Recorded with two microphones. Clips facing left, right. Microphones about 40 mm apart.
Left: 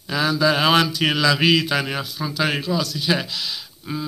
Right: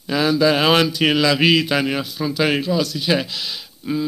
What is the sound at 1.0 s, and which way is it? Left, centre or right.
Mantra, centre.